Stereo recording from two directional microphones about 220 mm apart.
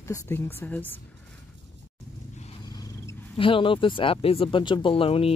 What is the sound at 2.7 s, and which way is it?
Speech, 20° left (ahead or behind).